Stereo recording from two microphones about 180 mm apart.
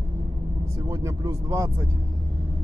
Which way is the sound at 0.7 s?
15° right (ahead or behind).